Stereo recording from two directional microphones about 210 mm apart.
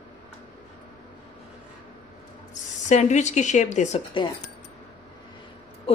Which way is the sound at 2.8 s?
35° left (ahead or behind).